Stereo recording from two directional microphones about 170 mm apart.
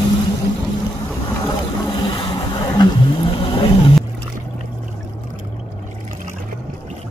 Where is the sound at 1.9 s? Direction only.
30° left (ahead or behind).